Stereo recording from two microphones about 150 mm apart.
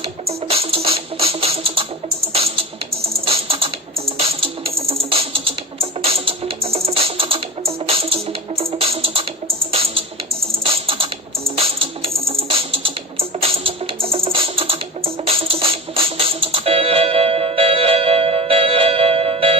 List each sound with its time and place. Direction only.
0.2 s music: 40° right (ahead or behind)